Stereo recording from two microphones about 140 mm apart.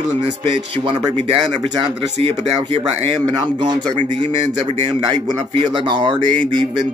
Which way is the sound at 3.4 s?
30° right (ahead or behind).